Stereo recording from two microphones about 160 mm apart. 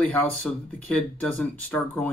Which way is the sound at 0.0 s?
10° left (ahead or behind).